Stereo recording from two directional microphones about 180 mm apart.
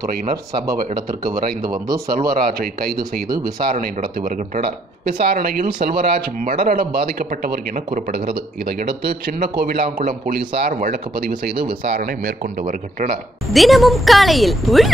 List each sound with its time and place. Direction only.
0.7 s speech: 20° right (ahead or behind)
2.2 s speech: 55° right (ahead or behind)
9.8 s speech: 45° right (ahead or behind)
13.5 s a woman's voice: centre (ahead or behind)